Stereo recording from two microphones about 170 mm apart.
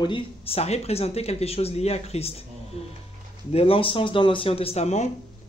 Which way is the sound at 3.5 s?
35° left (ahead or behind).